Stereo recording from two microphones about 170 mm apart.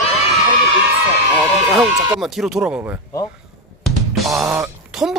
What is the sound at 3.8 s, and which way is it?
Drum kit, centre (ahead or behind).